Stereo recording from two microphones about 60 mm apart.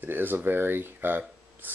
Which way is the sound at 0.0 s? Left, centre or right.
Right.